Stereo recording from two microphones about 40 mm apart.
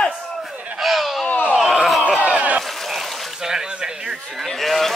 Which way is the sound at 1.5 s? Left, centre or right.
Centre.